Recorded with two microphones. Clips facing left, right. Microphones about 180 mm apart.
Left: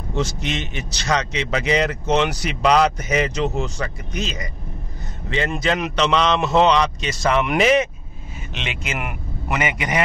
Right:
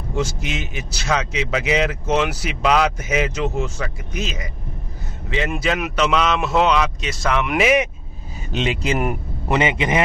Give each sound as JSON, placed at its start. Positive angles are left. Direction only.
{"t": 0.1, "sound": "a man's voice", "side_deg": -10}
{"t": 8.5, "sound": "a man's voice", "side_deg": -35}